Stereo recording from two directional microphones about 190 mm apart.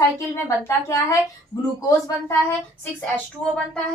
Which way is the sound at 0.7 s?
15° left (ahead or behind).